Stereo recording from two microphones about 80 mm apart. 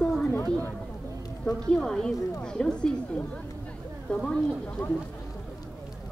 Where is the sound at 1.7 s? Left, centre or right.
Centre.